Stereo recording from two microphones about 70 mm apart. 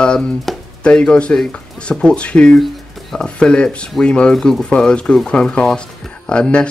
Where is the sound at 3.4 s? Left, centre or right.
Centre.